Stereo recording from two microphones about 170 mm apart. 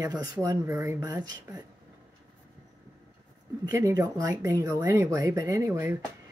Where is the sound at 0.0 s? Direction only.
20° right (ahead or behind).